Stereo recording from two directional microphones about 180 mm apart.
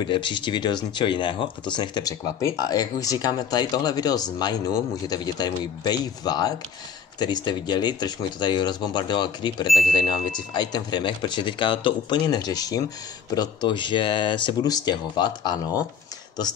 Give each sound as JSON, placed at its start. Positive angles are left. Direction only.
{"t": 0.0, "sound": "speech", "side_deg": 25}